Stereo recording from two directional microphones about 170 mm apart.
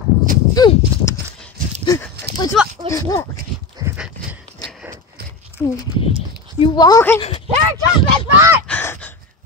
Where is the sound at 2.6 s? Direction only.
5° right (ahead or behind).